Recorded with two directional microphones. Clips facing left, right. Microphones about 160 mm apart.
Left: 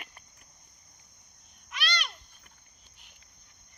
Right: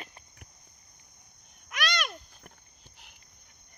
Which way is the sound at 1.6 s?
50° right (ahead or behind).